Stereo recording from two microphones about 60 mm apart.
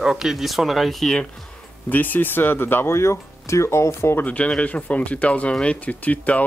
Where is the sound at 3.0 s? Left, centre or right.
Left.